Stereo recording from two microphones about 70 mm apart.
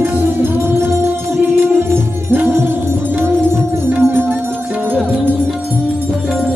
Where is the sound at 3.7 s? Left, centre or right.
Right.